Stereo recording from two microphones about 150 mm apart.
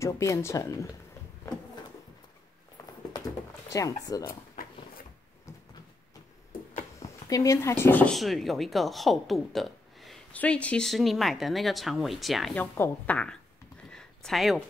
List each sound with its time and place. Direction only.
0.0 s speech: 20° left (ahead or behind)
3.7 s speech: 25° left (ahead or behind)
7.0 s speech: 20° left (ahead or behind); by 12.6 s centre (ahead or behind)
12.7 s speech: 15° left (ahead or behind)
13.8 s a sound: 5° left (ahead or behind)